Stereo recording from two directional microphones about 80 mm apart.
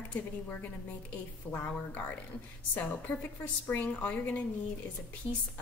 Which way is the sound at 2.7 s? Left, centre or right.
Centre.